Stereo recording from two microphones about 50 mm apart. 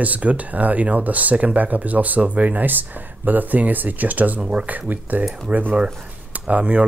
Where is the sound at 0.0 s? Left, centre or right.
Right.